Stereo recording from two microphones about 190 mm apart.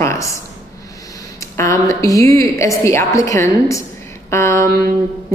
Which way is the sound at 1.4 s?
15° left (ahead or behind).